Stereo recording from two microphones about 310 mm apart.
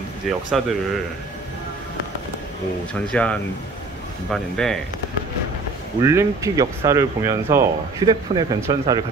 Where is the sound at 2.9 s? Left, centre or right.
Centre.